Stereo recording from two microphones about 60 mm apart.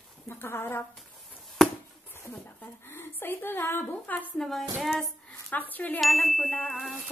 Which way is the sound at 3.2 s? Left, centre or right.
Left.